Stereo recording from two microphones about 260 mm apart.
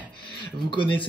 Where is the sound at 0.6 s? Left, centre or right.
Centre.